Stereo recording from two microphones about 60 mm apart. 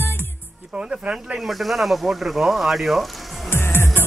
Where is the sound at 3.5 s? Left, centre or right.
Left.